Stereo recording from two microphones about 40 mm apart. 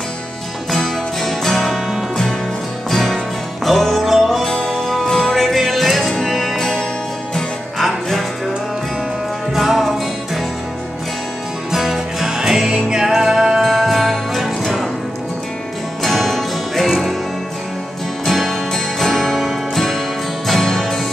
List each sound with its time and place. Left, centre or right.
0.7 s music: centre
2.9 s music: centre
4.5 s music: centre
4.7 s music: centre
5.0 s music: centre
5.3 s music: centre
9.5 s music: centre
11.7 s music: centre
16.0 s music: centre
18.2 s music: centre